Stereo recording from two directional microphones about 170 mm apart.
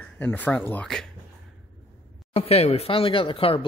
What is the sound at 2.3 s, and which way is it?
Speech, 35° left (ahead or behind).